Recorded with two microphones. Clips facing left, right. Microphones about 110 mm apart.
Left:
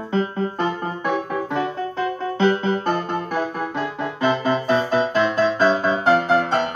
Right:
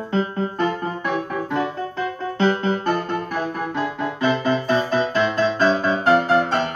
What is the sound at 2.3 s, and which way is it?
Music, 20° left (ahead or behind).